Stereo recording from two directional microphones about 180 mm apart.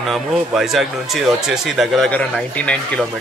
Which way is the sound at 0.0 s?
Centre (ahead or behind).